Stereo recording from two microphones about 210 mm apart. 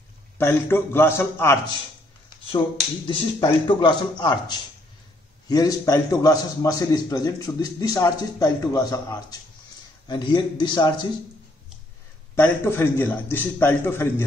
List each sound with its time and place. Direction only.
0.4 s a man's voice: 10° left (ahead or behind)
3.1 s a man's voice: 25° left (ahead or behind)
12.4 s a man's voice: 10° left (ahead or behind)